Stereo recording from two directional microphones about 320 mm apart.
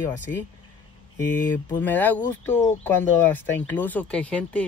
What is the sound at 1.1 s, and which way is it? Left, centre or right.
Speech, centre.